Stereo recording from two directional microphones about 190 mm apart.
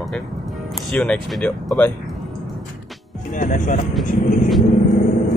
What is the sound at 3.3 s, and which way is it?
Speech, 45° left (ahead or behind).